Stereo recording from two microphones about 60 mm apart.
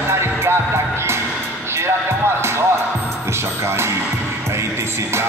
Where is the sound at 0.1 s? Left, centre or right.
Right.